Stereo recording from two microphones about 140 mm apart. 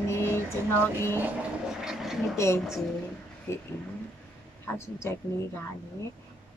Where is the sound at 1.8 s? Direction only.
5° right (ahead or behind).